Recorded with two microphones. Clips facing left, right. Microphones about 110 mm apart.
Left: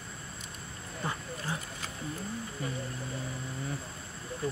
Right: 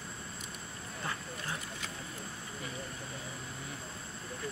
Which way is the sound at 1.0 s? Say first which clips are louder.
Left 4 dB; 20° left (ahead or behind).